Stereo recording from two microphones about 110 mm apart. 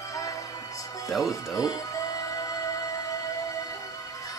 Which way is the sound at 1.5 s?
35° left (ahead or behind).